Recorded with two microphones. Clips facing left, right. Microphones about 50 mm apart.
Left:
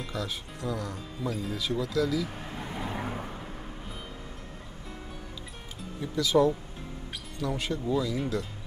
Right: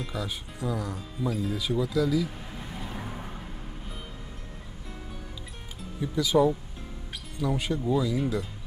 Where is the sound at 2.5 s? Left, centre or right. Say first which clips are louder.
Left 3 dB; left.